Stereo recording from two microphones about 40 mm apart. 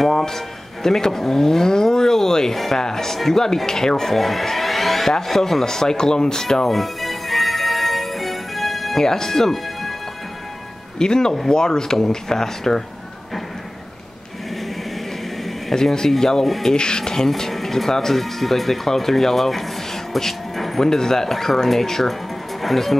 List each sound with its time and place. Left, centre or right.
0.0 s speech: centre
5.1 s music: centre
11.0 s speech: centre
15.7 s speech: centre
16.7 s speech: left; by 22.9 s centre